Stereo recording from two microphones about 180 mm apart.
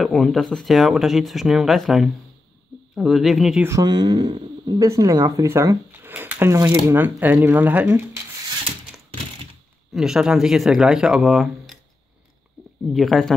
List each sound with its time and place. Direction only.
0.0 s speech: centre (ahead or behind)
3.6 s speech: 20° right (ahead or behind)
9.9 s speech: 5° right (ahead or behind)
12.9 s speech: centre (ahead or behind)